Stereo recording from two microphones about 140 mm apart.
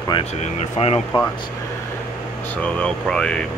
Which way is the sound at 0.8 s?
45° left (ahead or behind).